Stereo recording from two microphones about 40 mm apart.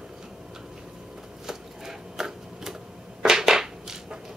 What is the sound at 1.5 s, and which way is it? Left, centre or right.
Typewriter, centre.